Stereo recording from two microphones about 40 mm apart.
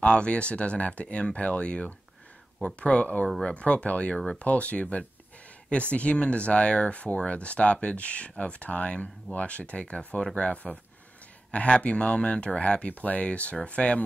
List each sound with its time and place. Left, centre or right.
0.0 s speech: left